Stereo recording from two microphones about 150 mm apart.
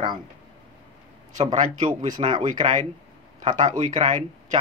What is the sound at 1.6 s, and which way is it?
Speech, 55° right (ahead or behind).